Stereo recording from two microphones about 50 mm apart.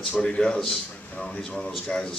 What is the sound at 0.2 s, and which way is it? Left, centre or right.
A man's voice, centre.